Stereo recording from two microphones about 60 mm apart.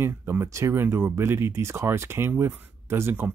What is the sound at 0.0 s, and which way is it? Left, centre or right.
Speech, right.